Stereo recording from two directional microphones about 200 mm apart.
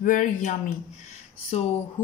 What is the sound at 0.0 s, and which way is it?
Speech, 40° left (ahead or behind).